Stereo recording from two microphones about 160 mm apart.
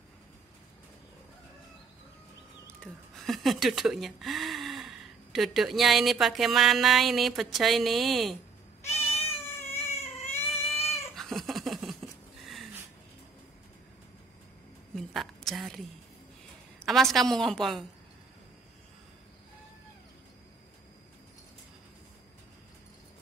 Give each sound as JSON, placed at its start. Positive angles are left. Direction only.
{"t": 2.8, "sound": "speech", "side_deg": 0}
{"t": 8.8, "sound": "cat", "side_deg": 40}
{"t": 10.4, "sound": "baby cry", "side_deg": 40}
{"t": 11.1, "sound": "cat", "side_deg": 0}
{"t": 15.0, "sound": "a sound", "side_deg": 0}
{"t": 16.8, "sound": "a woman's voice", "side_deg": 0}